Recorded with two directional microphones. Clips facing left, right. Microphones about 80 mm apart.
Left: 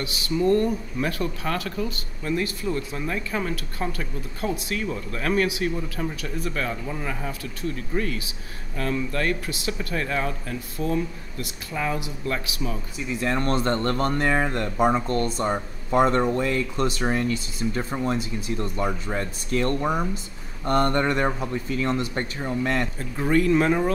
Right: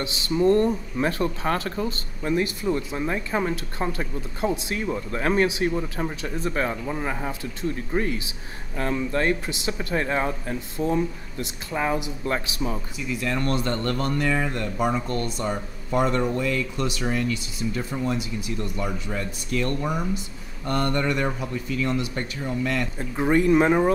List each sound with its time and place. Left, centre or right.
0.0 s speech: right
13.1 s speech: left
22.9 s speech: right